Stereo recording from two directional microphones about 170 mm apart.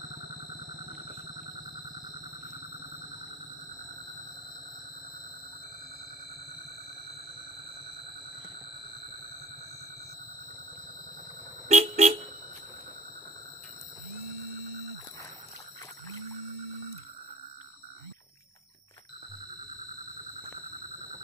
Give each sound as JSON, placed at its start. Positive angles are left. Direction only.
{"t": 11.7, "sound": "vehicle", "side_deg": -40}